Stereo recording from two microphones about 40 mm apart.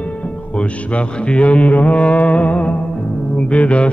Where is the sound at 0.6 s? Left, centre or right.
Left.